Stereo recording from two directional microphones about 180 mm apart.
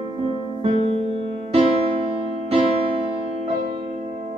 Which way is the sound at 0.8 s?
30° left (ahead or behind).